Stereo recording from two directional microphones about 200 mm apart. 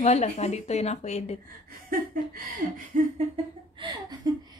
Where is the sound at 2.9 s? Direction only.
40° right (ahead or behind).